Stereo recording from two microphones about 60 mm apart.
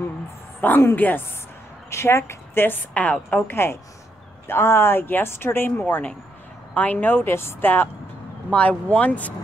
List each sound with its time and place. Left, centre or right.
0.6 s speech: left
1.9 s speech: left
2.9 s a woman's voice: left
3.3 s speech: left
8.5 s a woman's voice: left